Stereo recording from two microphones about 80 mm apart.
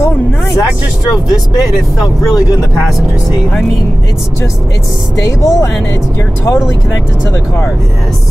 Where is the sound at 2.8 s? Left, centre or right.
Centre.